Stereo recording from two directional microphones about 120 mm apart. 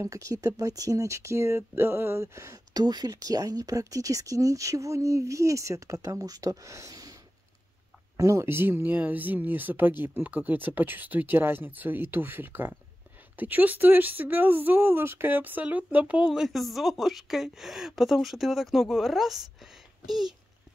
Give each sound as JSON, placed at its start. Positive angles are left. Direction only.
{"t": 0.0, "sound": "speech", "side_deg": -25}
{"t": 8.2, "sound": "speech", "side_deg": -25}
{"t": 19.6, "sound": "a sound", "side_deg": -5}